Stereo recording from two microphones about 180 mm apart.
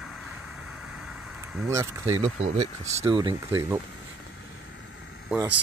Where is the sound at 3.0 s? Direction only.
25° right (ahead or behind).